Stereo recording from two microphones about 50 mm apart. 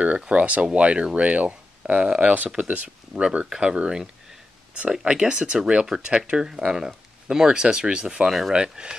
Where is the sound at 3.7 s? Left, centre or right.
Right.